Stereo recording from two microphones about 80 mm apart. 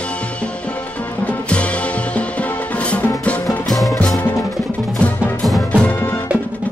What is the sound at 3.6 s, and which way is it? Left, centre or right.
Music, centre.